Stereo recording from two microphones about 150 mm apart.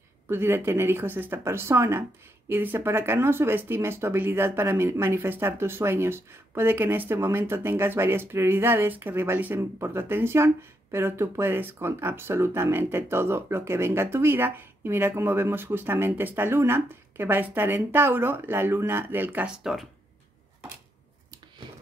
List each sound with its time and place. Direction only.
0.3 s speech: 15° right (ahead or behind)